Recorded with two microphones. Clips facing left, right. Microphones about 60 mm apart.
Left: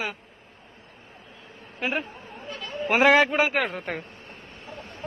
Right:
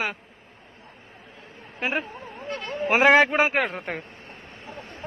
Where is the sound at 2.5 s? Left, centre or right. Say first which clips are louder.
Right 5 dB; right.